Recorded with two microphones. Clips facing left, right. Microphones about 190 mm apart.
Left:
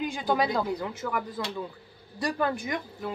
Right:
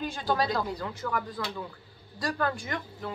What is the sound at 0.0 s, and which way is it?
A woman's voice, 15° left (ahead or behind).